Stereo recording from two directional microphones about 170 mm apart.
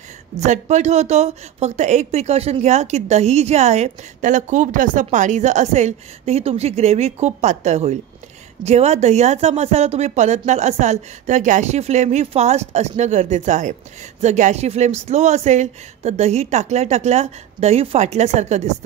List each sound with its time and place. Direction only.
0.4 s speech: 45° right (ahead or behind)